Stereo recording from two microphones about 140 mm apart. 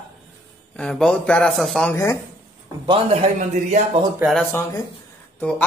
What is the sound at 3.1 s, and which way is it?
Speech, 55° right (ahead or behind).